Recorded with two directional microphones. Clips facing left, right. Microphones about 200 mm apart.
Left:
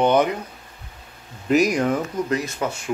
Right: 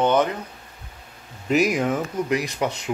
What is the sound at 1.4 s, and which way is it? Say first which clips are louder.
Speech: left 2 dB; 5° right (ahead or behind).